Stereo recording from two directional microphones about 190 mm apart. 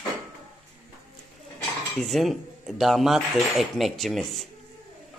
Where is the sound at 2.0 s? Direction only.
Centre (ahead or behind).